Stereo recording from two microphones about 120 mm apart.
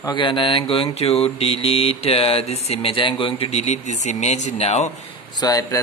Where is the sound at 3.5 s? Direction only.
65° left (ahead or behind).